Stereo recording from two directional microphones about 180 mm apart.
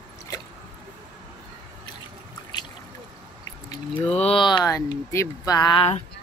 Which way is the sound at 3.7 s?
30° left (ahead or behind).